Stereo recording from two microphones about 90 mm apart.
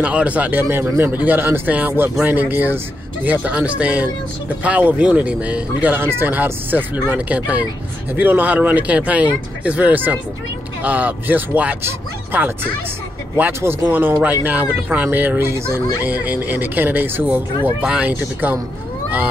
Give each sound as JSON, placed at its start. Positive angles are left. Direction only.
{"t": 0.0, "sound": "speech", "side_deg": -15}
{"t": 16.0, "sound": "speech", "side_deg": -20}